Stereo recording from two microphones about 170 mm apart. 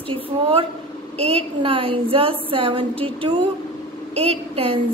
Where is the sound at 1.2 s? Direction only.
35° right (ahead or behind).